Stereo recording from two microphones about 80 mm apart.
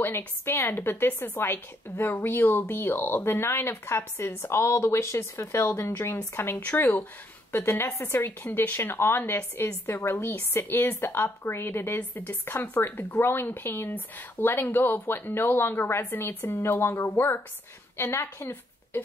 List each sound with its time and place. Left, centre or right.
0.0 s speech: left